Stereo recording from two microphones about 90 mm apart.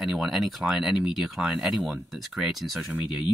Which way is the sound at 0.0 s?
Centre (ahead or behind).